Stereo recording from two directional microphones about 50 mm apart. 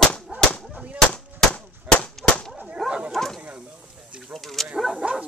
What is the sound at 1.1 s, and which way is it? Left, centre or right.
Gunshot, left.